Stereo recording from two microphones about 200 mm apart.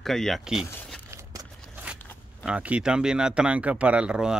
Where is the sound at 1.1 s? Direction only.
15° right (ahead or behind).